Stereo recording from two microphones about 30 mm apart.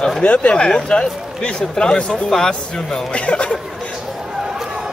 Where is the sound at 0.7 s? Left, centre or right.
Left.